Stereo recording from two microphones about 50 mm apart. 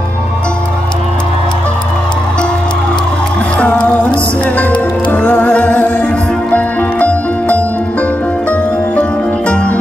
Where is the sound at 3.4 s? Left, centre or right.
Left.